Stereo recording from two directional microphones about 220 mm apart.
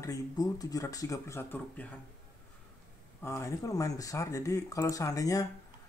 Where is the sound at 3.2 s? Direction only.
10° left (ahead or behind).